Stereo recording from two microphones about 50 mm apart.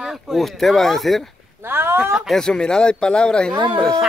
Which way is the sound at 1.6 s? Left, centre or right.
Right.